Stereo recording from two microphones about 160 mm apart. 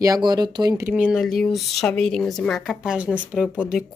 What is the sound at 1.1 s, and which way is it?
Speech, 5° left (ahead or behind).